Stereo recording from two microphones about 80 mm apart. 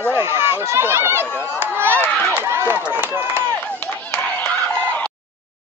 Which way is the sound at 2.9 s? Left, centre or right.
Right.